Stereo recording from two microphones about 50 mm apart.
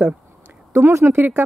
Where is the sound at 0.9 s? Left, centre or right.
Right.